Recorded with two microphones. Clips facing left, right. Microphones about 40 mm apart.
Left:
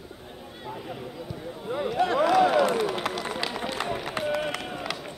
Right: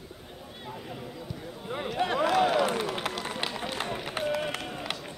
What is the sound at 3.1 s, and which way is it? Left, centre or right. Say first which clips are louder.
Run: left 3 dB; centre.